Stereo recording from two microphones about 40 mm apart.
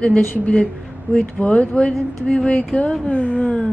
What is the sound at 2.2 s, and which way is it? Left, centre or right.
Speech, centre.